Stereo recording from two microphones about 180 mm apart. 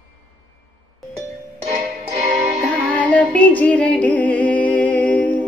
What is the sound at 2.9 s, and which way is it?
Music, 10° left (ahead or behind).